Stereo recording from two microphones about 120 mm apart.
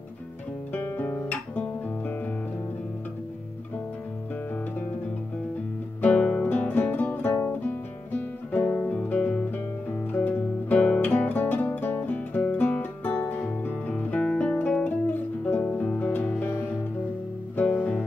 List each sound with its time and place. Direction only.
0.7 s guitar: 15° left (ahead or behind)
5.9 s music: 10° left (ahead or behind)